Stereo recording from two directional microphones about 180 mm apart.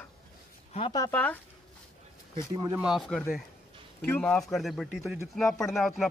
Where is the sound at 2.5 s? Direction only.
20° right (ahead or behind).